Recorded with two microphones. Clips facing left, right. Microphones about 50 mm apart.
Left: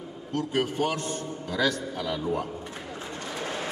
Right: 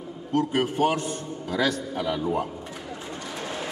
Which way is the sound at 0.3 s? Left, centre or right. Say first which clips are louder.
Right 4 dB; centre.